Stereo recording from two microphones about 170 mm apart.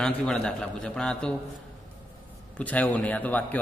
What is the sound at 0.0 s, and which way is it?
A man's voice, 5° left (ahead or behind).